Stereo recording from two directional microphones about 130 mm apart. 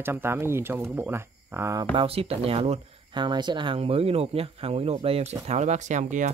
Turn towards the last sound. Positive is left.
turn(degrees=-75)  # may be behind; listen again after turning